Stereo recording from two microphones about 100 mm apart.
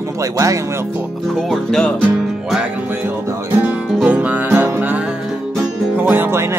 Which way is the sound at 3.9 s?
10° right (ahead or behind).